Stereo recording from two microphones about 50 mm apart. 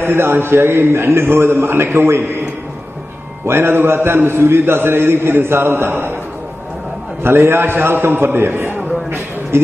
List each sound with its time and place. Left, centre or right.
0.0 s a man's voice: right
3.4 s a man's voice: right
7.2 s a man's voice: right
8.4 s a sound: right